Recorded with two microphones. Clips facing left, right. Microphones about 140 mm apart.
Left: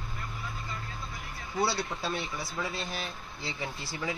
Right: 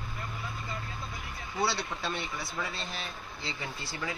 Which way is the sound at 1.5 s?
10° left (ahead or behind).